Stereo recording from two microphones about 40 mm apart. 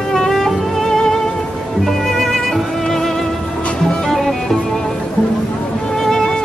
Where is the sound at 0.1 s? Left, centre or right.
Centre.